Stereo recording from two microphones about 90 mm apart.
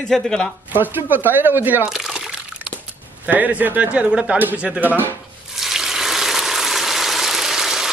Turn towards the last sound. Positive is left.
turn(degrees=-5)  # may be behind; listen again after turning